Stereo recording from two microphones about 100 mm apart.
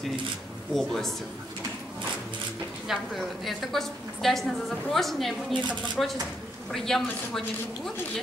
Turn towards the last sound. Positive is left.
turn(degrees=5)  # may be behind; listen again after turning